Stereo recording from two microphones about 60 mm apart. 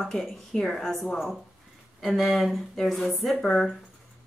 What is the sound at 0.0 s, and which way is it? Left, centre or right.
A woman's voice, centre.